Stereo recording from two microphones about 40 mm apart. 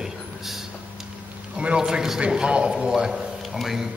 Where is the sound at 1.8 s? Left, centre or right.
Centre.